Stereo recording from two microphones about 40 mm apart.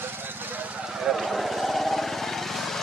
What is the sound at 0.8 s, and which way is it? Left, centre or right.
Vehicle, centre.